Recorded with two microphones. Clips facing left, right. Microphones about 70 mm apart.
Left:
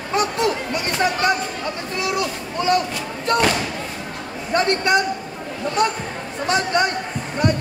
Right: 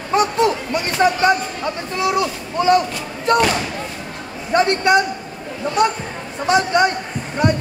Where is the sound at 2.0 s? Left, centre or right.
Right.